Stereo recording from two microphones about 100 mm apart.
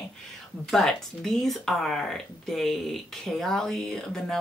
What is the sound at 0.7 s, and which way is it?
Speech, 5° left (ahead or behind).